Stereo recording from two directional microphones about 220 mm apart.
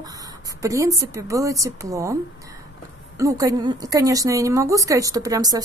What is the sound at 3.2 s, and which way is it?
A woman's voice, 15° right (ahead or behind).